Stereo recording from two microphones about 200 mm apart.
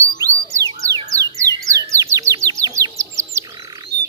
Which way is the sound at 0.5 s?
15° right (ahead or behind).